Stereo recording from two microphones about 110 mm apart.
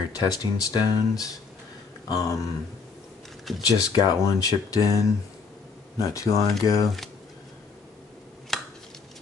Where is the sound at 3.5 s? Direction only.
Centre (ahead or behind).